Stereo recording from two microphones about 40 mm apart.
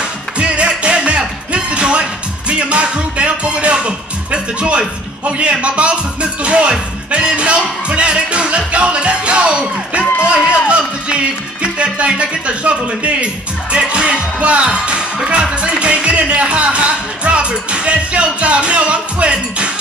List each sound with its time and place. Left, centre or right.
0.4 s music: right
2.7 s speech: right
7.1 s music: right